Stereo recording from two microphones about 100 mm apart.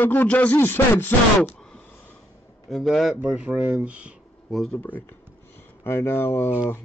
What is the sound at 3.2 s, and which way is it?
Speech, 10° right (ahead or behind).